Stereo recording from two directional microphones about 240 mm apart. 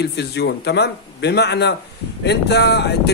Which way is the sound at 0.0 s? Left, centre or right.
Left.